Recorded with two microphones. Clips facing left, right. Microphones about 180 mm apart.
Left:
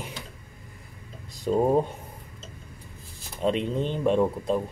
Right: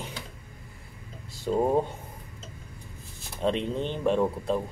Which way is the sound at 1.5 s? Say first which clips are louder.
Left 2 dB; 10° left (ahead or behind).